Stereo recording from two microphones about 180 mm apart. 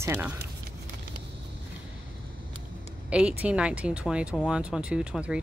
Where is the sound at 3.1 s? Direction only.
5° right (ahead or behind).